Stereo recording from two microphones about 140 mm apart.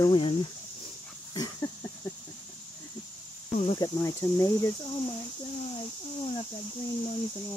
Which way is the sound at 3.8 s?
25° left (ahead or behind).